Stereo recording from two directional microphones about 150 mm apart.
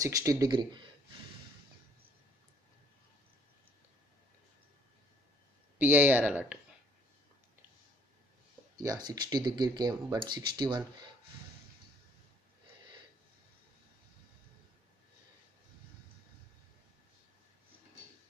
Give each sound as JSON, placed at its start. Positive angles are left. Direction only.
{"t": 0.0, "sound": "speech", "side_deg": -20}
{"t": 5.8, "sound": "speech", "side_deg": -15}
{"t": 8.8, "sound": "speech", "side_deg": -25}